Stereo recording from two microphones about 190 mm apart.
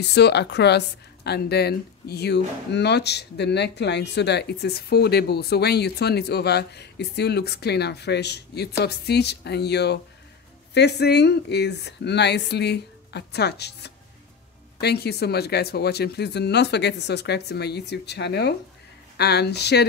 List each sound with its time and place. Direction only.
0.1 s a woman's voice: 60° left (ahead or behind)